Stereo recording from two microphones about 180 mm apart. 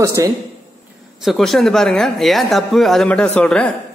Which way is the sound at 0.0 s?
15° right (ahead or behind).